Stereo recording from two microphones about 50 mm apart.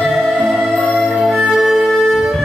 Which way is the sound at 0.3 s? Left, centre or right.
Centre.